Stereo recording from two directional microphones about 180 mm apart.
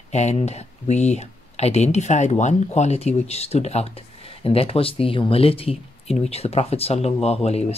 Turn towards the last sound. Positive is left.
turn(degrees=35)  # may be behind; listen again after turning